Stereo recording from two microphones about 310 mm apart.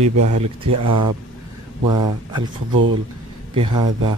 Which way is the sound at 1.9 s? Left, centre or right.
Centre.